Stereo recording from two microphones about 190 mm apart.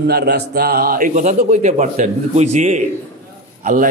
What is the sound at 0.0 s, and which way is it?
Mantra, 55° right (ahead or behind).